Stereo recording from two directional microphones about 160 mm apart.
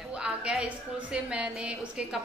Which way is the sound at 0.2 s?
5° right (ahead or behind).